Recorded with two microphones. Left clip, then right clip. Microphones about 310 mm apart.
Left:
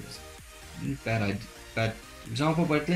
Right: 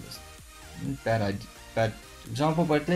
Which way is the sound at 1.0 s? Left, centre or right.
Right.